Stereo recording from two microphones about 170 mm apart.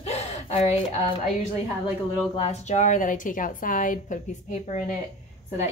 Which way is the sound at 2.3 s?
40° left (ahead or behind).